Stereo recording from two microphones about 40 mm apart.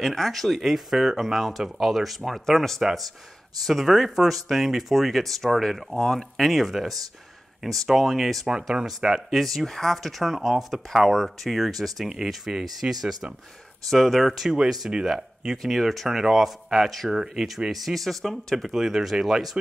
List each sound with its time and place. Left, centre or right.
0.0 s speech: centre
12.1 s speech: centre
13.8 s speech: centre
17.6 s speech: centre
18.7 s speech: centre